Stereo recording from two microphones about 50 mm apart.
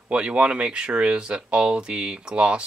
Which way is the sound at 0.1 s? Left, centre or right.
Right.